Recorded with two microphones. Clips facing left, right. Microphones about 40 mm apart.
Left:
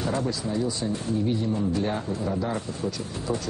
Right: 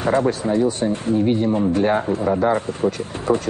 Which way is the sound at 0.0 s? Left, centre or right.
Right.